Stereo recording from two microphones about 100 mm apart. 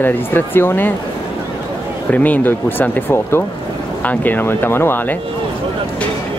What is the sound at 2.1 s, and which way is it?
Speech, 15° left (ahead or behind).